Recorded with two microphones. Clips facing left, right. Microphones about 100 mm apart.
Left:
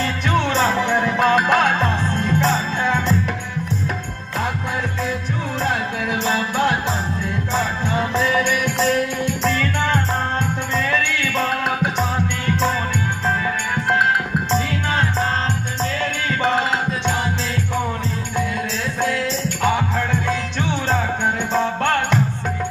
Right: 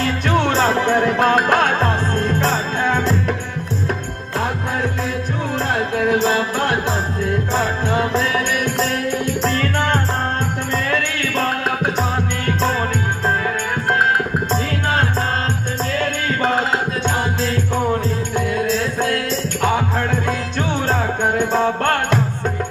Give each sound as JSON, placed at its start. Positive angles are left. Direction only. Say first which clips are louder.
{"t": 0.4, "sound": "music", "louder": "right 2 dB", "side_deg": -40}
{"t": 9.2, "sound": "music", "louder": "right 1 dB", "side_deg": -45}
{"t": 11.1, "sound": "music", "louder": "right 1 dB", "side_deg": -45}
{"t": 14.7, "sound": "music", "louder": "right 2 dB", "side_deg": -50}
{"t": 20.2, "sound": "music", "louder": "right 1 dB", "side_deg": -45}